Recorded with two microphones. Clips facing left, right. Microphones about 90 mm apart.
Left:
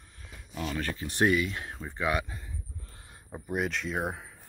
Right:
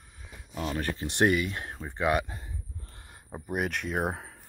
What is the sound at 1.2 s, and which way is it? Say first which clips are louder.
Speech: right 1 dB; 45° right (ahead or behind).